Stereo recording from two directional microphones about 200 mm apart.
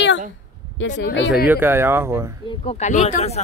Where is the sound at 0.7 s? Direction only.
65° left (ahead or behind).